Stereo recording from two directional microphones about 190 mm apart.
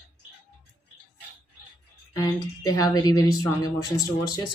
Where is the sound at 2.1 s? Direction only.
20° left (ahead or behind).